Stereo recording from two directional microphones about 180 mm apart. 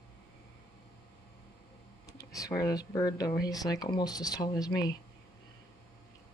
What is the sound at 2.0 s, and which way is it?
Speech, 20° left (ahead or behind).